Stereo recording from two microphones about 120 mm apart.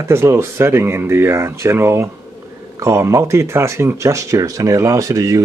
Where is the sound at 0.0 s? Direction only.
20° right (ahead or behind).